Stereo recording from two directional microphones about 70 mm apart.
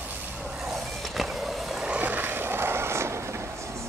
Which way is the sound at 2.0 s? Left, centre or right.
Right.